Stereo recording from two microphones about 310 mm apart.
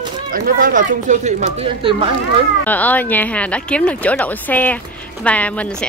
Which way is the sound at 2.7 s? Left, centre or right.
Centre.